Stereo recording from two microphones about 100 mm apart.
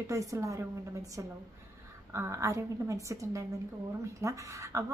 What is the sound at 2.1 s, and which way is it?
A woman's voice, 30° right (ahead or behind).